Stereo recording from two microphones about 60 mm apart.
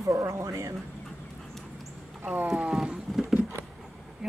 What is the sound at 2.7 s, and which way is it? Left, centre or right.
Livestock, centre.